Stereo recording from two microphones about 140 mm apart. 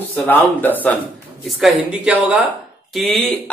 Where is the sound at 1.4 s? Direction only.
Centre (ahead or behind).